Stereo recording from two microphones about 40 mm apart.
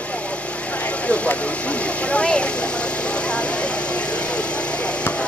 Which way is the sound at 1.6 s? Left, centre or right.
Left.